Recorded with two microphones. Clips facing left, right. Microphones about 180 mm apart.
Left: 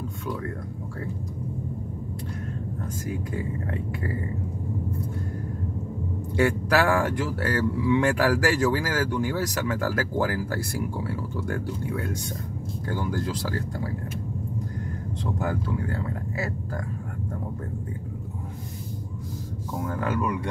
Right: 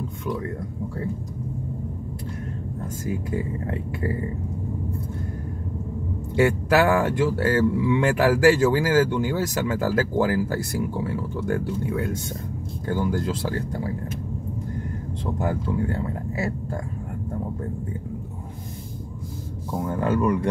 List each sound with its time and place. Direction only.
6.3 s speech: 25° right (ahead or behind)
13.3 s speech: 25° right (ahead or behind)
15.3 s speech: 25° right (ahead or behind)
19.9 s speech: 30° right (ahead or behind)